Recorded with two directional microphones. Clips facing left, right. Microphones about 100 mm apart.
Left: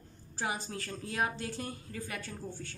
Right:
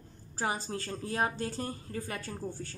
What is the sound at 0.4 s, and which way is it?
A woman's voice, 40° right (ahead or behind).